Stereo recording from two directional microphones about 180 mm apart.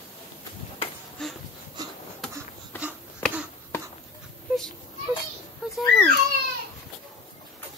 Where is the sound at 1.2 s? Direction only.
5° left (ahead or behind).